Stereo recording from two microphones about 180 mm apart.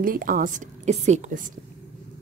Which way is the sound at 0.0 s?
50° right (ahead or behind).